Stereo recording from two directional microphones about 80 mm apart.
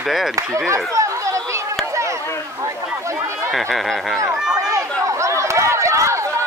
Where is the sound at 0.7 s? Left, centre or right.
Right.